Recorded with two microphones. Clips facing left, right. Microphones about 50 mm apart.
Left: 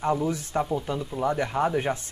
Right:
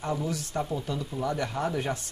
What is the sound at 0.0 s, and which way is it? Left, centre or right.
Speech, left.